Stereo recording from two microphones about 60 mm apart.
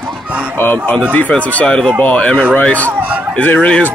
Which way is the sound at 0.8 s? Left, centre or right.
Centre.